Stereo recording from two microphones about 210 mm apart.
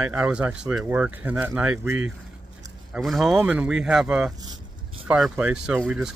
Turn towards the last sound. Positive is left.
turn(degrees=-5)  # may be behind; listen again after turning